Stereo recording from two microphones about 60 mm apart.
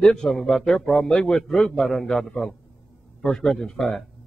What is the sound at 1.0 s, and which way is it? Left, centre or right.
Speech, centre.